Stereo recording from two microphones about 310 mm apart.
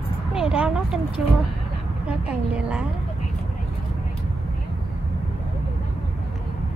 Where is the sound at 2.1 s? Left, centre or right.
Centre.